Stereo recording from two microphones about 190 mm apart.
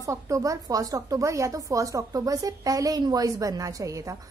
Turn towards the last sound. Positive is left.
turn(degrees=-15)  # may be behind; listen again after turning